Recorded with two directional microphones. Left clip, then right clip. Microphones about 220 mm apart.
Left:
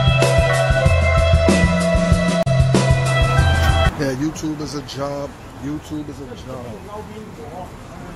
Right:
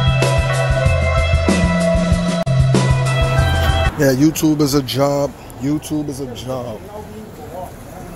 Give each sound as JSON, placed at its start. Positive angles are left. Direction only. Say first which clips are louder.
{"t": 0.0, "sound": "music", "louder": "left 2 dB", "side_deg": 0}
{"t": 4.0, "sound": "music", "louder": "right 8 dB", "side_deg": -25}
{"t": 4.3, "sound": "speech", "louder": "right 10 dB", "side_deg": -40}